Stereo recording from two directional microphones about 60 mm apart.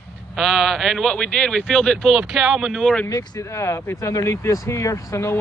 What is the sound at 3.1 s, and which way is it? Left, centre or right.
Speech, left.